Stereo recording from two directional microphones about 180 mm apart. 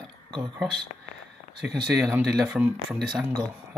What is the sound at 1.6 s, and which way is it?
Speech, 65° right (ahead or behind).